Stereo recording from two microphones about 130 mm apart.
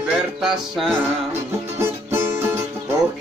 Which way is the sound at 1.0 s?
20° right (ahead or behind).